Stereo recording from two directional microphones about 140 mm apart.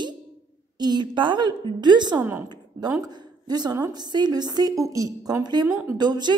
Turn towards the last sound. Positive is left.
turn(degrees=-30)  # may be behind; listen again after turning